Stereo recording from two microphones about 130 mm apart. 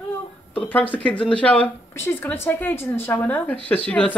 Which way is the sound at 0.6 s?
10° left (ahead or behind).